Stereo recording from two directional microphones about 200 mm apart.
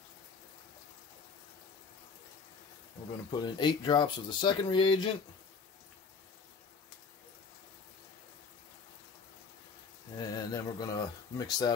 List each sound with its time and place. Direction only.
3.3 s speech: 20° left (ahead or behind)
10.1 s speech: 20° left (ahead or behind)